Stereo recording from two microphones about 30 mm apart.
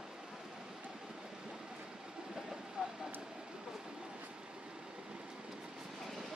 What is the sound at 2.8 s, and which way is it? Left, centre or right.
Vehicle, right.